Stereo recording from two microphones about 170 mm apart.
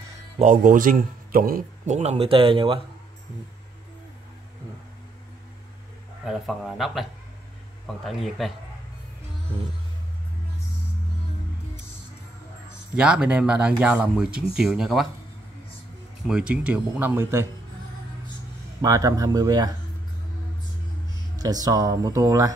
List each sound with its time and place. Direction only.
0.4 s a man's voice: 50° right (ahead or behind); by 2.8 s 30° right (ahead or behind)
6.2 s speech: centre (ahead or behind)
12.9 s speech: 5° right (ahead or behind)
16.3 s speech: 5° right (ahead or behind)
18.8 s speech: 20° right (ahead or behind)
21.4 s speech: 20° right (ahead or behind)